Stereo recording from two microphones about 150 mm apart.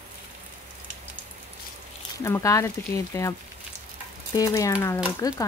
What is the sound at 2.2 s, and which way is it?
Speech, 20° left (ahead or behind).